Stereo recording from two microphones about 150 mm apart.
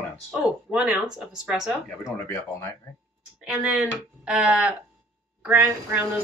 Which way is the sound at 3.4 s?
5° right (ahead or behind).